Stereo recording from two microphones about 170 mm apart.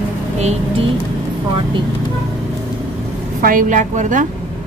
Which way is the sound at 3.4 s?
55° right (ahead or behind).